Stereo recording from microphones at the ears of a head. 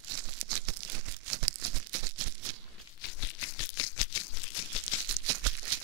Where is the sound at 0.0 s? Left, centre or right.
Right.